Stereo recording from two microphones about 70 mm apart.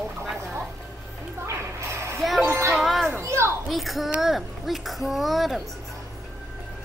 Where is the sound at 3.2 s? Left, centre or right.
Right.